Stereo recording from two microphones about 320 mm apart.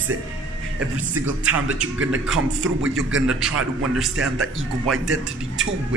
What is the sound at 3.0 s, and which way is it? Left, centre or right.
Speech, right.